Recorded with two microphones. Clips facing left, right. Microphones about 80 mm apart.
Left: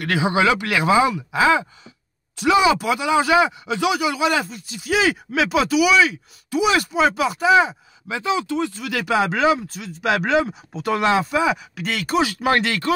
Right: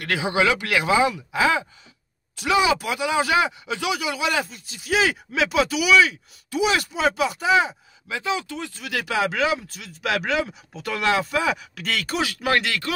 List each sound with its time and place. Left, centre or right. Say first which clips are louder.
0.0 s speech: left 3 dB; left